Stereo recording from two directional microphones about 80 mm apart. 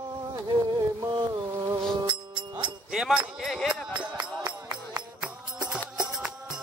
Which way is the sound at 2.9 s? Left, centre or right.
Centre.